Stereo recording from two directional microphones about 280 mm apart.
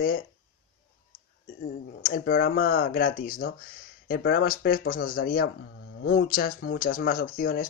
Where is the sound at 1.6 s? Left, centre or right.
Left.